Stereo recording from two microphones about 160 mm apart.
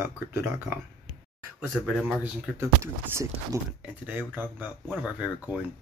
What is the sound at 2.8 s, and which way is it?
Speech, 15° right (ahead or behind).